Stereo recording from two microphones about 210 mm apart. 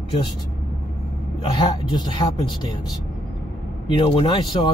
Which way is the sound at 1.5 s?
20° left (ahead or behind).